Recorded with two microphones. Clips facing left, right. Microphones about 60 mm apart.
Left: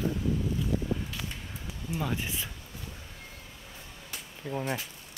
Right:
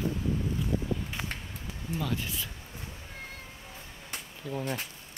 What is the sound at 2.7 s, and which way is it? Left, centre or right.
Cat, right.